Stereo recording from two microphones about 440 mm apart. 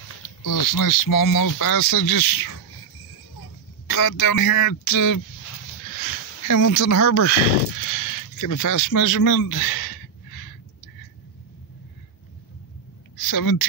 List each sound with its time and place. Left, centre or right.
0.2 s speech: left
3.9 s speech: left
5.9 s a sound: left
7.8 s speech: left
13.3 s speech: left